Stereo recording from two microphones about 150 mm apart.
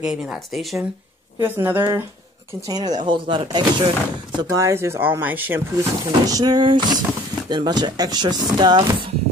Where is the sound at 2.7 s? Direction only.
25° right (ahead or behind).